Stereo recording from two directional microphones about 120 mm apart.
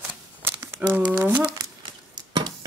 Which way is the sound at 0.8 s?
10° right (ahead or behind).